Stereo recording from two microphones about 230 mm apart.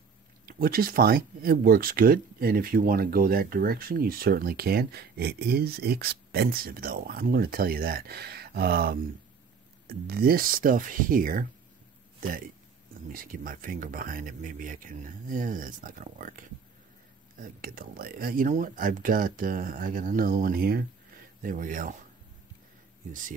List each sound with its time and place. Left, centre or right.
0.5 s speech: right